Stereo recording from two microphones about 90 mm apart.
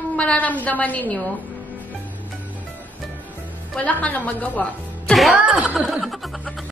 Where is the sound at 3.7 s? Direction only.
15° left (ahead or behind).